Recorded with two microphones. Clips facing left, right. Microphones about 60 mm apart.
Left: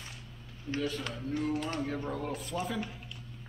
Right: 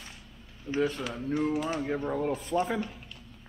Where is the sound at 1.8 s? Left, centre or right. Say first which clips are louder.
Right 5 dB; right.